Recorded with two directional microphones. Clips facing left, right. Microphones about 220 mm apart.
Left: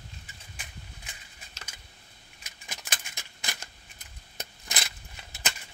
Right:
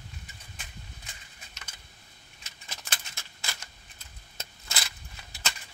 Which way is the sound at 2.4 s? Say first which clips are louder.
Left 1 dB; 15° left (ahead or behind).